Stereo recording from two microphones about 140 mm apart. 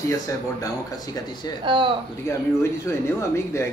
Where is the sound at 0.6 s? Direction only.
25° left (ahead or behind).